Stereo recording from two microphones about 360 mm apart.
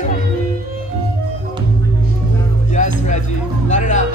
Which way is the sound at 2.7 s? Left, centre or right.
Centre.